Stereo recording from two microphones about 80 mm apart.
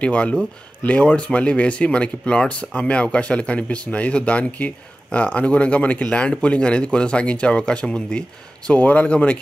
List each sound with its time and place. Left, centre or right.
0.0 s speech: centre